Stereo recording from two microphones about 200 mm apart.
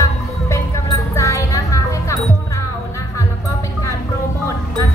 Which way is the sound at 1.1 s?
15° left (ahead or behind).